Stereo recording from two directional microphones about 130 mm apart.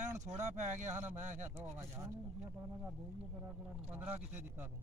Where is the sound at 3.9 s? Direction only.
15° right (ahead or behind).